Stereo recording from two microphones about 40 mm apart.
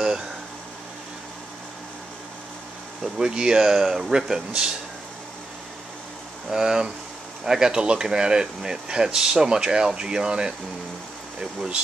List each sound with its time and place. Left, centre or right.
3.0 s speech: centre
6.5 s speech: centre